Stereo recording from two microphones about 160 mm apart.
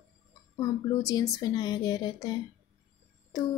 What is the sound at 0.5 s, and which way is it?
Speech, 25° left (ahead or behind).